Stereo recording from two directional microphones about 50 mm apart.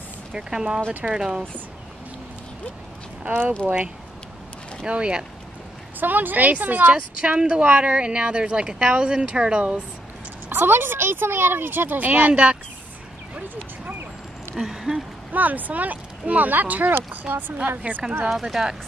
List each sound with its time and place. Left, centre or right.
0.3 s speech: centre
3.3 s speech: right
4.8 s speech: centre
5.9 s speech: right; by 9.8 s centre
10.5 s speech: right
14.5 s speech: centre
15.3 s speech: right
18.3 s speech: centre